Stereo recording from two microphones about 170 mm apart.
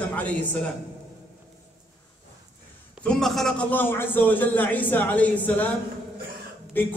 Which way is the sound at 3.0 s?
5° left (ahead or behind).